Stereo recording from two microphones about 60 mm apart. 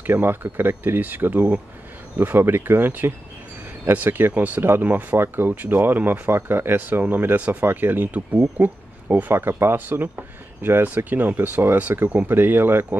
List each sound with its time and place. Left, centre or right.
0.0 s speech: right